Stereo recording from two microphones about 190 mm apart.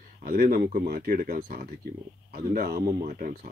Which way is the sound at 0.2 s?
50° right (ahead or behind).